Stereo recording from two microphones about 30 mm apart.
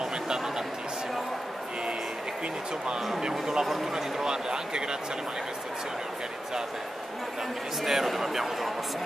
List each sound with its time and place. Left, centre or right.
3.2 s speech: right
7.8 s speech: centre